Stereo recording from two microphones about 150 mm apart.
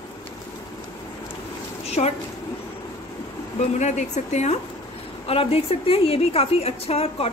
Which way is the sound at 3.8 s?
50° left (ahead or behind).